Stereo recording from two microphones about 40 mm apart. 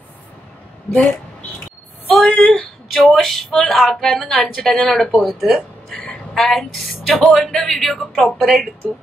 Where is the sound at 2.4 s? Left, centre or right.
Left.